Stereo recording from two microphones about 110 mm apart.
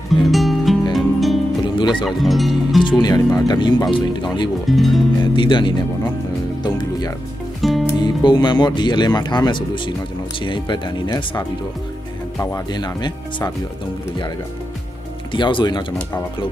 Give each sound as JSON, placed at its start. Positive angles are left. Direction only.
{"t": 0.1, "sound": "music", "side_deg": 0}
{"t": 1.8, "sound": "music", "side_deg": 45}
{"t": 2.0, "sound": "speech", "side_deg": 0}
{"t": 2.8, "sound": "speech", "side_deg": 45}
{"t": 4.6, "sound": "speech", "side_deg": 0}
{"t": 5.2, "sound": "speech", "side_deg": 50}
{"t": 6.6, "sound": "music", "side_deg": 40}
{"t": 7.6, "sound": "music", "side_deg": 0}
{"t": 8.0, "sound": "speech", "side_deg": 45}
{"t": 12.6, "sound": "speech", "side_deg": 40}
{"t": 15.3, "sound": "speech", "side_deg": 45}